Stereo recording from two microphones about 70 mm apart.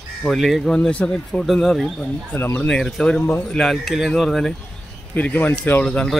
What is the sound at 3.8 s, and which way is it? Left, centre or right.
Speech, centre.